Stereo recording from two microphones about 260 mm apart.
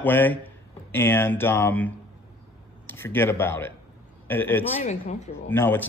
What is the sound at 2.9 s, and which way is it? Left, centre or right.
A man's voice, centre.